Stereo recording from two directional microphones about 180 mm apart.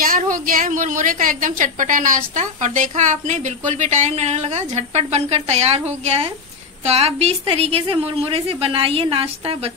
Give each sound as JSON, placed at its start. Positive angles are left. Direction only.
{"t": 0.0, "sound": "a woman's voice", "side_deg": -50}